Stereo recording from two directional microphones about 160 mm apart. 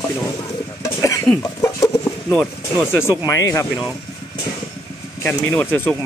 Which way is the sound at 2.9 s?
15° left (ahead or behind).